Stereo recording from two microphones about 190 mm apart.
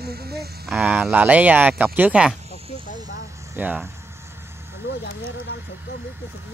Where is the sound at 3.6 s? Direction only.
10° right (ahead or behind).